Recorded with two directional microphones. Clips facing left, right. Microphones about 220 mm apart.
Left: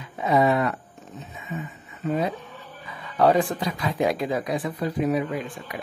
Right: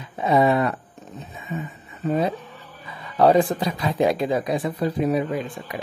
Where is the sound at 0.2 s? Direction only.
30° right (ahead or behind).